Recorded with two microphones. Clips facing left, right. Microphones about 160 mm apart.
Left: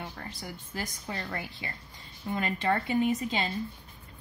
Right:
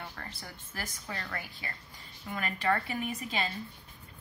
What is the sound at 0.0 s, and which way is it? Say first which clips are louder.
A woman's voice: left 4 dB; 15° left (ahead or behind).